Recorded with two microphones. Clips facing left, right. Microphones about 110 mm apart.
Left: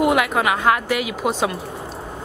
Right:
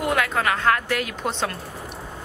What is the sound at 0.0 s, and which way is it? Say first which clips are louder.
A woman's voice: left 5 dB; 15° left (ahead or behind).